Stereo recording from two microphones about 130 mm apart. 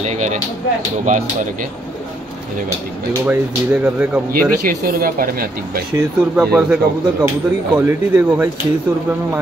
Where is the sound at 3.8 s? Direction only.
15° right (ahead or behind).